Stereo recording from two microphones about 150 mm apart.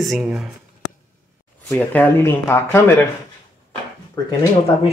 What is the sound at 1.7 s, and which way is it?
Speech, 10° left (ahead or behind).